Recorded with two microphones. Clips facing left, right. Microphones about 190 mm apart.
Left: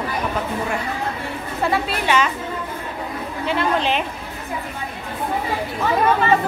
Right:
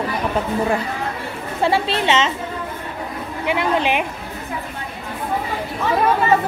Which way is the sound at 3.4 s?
15° right (ahead or behind).